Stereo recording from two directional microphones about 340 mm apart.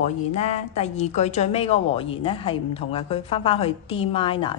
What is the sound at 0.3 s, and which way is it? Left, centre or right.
A woman's voice, centre.